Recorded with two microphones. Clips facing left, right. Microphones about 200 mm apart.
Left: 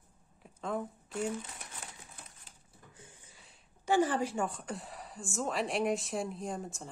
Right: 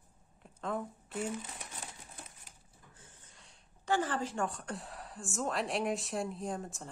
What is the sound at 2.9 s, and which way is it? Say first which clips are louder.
A woman's voice: left 3 dB; 10° left (ahead or behind).